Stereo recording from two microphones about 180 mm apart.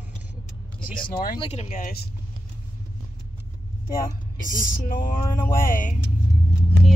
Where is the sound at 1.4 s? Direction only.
40° left (ahead or behind); by 2.1 s 55° left (ahead or behind).